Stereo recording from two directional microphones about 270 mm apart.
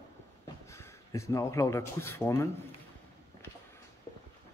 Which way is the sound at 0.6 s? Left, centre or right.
Centre.